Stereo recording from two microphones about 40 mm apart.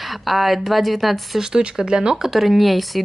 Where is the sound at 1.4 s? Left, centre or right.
Centre.